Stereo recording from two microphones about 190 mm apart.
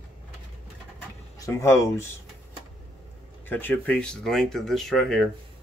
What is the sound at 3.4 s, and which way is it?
Speech, 10° left (ahead or behind).